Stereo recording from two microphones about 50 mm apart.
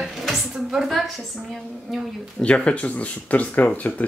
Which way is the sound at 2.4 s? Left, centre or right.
Left.